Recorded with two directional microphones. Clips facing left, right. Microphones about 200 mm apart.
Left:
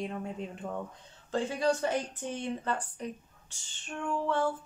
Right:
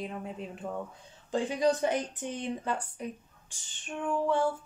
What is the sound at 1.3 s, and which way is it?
Speech, 15° right (ahead or behind).